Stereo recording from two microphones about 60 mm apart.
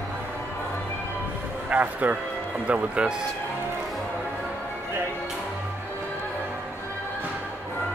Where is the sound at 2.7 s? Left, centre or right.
Centre.